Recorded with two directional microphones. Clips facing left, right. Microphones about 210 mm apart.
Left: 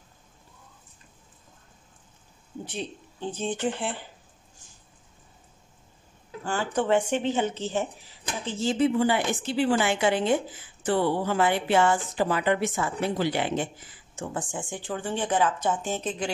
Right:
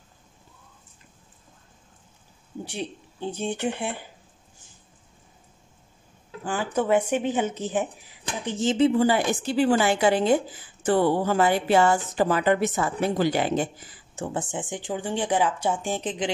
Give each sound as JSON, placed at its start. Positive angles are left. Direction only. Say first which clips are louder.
{"t": 2.6, "sound": "speech", "louder": "right 2 dB", "side_deg": -10}
{"t": 6.4, "sound": "speech", "louder": "right 1 dB", "side_deg": -5}
{"t": 8.9, "sound": "speech", "louder": "right 3 dB", "side_deg": -40}
{"t": 14.4, "sound": "speech", "louder": "right 3 dB", "side_deg": -20}